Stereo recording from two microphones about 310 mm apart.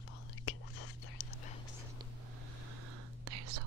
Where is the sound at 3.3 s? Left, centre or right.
Right.